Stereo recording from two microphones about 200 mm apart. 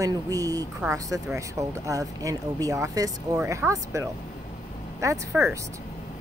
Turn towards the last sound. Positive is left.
turn(degrees=-15)  # may be behind; listen again after turning